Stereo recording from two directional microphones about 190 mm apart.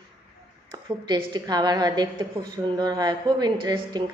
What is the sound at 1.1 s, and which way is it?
A man's voice, 20° right (ahead or behind).